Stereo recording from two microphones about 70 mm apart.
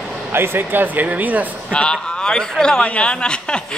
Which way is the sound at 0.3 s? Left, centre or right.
Right.